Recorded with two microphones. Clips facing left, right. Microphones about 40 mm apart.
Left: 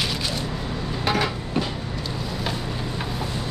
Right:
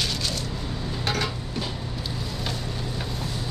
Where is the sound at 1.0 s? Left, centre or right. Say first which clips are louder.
Left 5 dB; centre.